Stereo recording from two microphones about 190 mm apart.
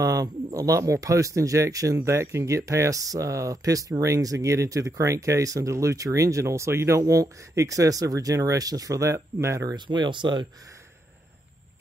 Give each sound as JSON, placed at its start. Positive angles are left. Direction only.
{"t": 0.0, "sound": "speech", "side_deg": -20}